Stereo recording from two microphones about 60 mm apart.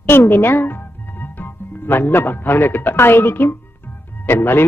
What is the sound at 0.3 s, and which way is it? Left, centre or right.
A man's voice, left.